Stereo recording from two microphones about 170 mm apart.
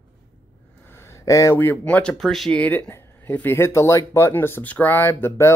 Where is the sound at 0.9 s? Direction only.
15° left (ahead or behind).